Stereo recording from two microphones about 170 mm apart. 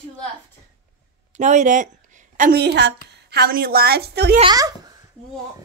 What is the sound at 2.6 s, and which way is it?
A woman's voice, 80° right.